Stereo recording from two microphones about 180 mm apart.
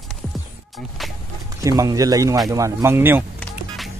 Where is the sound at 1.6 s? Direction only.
20° right (ahead or behind).